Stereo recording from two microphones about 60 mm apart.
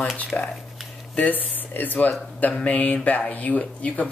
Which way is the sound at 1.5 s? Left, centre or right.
Left.